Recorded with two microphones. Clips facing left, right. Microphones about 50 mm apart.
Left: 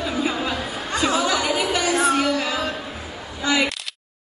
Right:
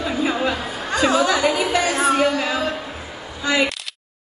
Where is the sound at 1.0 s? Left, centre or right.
Right.